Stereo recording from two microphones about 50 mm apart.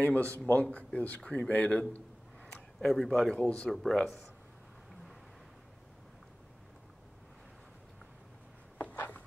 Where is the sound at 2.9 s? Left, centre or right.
Centre.